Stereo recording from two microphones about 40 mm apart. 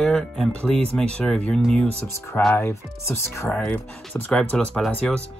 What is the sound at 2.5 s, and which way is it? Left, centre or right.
Speech, left.